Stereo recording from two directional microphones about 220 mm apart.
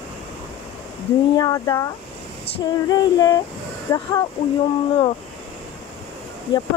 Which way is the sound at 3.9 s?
20° left (ahead or behind).